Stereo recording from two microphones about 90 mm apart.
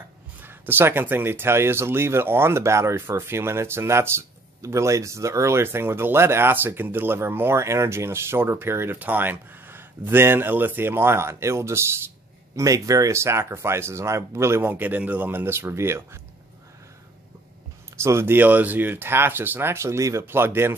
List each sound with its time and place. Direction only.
0.4 s speech: 25° right (ahead or behind)
18.0 s speech: 30° right (ahead or behind)